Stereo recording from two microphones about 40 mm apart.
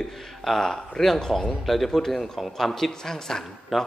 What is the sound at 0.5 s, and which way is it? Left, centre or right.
A man's voice, centre.